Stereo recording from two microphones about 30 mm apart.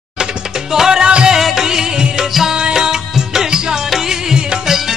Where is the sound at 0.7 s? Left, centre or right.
Right.